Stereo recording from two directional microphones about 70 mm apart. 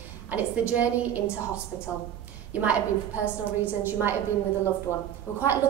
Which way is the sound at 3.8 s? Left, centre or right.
Right.